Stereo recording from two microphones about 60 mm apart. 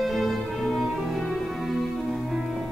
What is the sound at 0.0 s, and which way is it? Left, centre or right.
Music, centre.